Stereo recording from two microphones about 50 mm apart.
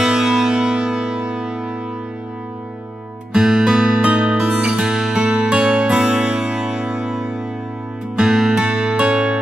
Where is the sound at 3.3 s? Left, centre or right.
Centre.